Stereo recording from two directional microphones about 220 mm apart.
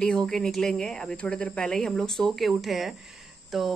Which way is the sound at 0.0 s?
5° left (ahead or behind).